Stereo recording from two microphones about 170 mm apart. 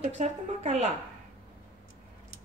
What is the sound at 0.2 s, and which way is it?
Speech, 40° right (ahead or behind).